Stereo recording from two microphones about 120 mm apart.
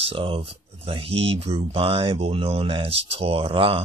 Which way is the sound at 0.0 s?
50° right (ahead or behind).